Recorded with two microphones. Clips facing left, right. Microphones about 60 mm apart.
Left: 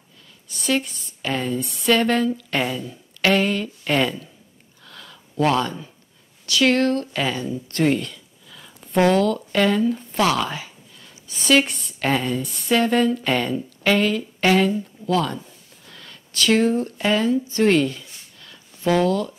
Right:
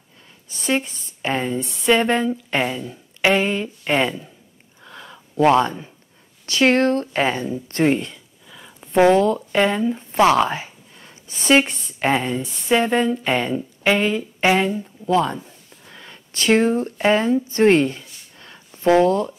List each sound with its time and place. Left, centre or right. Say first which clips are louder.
0.5 s a woman's voice: right 1 dB; right
4.8 s a sound: right 4 dB; right
6.4 s a woman's voice: right 2 dB; right